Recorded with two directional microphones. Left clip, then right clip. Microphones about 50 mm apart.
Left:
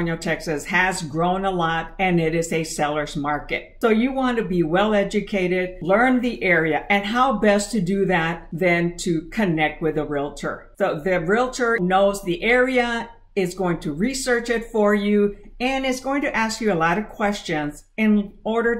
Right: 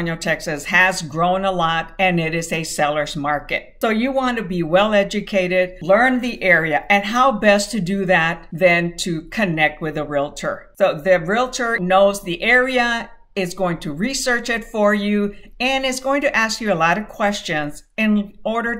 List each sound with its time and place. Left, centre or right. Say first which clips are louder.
0.0 s speech: right 3 dB; right